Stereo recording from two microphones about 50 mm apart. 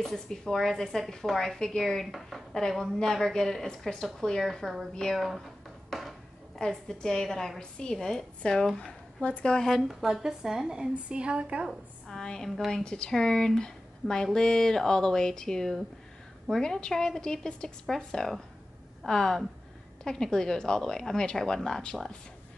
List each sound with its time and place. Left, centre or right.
0.0 s speech: centre
5.9 s a sound: centre
6.6 s speech: centre
9.7 s a woman's voice: centre; by 11.6 s right
12.1 s a woman's voice: centre
12.8 s speech: centre